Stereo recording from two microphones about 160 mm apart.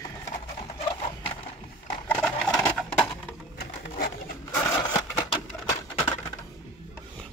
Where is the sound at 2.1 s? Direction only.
10° left (ahead or behind).